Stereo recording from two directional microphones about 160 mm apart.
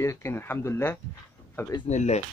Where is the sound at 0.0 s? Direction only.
15° left (ahead or behind).